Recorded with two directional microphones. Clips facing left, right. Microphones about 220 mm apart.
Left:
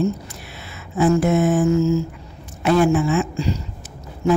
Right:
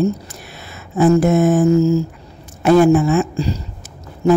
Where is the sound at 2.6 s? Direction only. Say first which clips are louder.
Right 5 dB; 45° right (ahead or behind).